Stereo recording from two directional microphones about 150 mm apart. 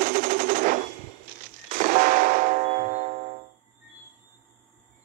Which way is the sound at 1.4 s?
65° right (ahead or behind).